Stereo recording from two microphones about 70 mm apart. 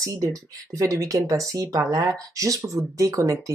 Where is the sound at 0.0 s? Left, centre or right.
Right.